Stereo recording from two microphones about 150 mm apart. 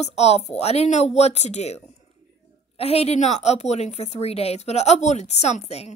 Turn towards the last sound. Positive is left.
turn(degrees=45)  # may be behind; listen again after turning